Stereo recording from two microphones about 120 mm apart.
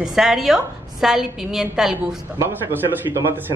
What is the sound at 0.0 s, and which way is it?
A woman's voice, 5° right (ahead or behind).